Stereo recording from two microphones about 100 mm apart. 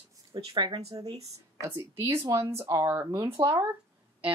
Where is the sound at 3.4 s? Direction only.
50° right (ahead or behind).